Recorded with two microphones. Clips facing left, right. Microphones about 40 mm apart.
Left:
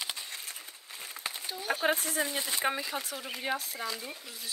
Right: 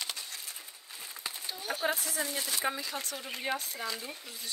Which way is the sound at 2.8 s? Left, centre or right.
Centre.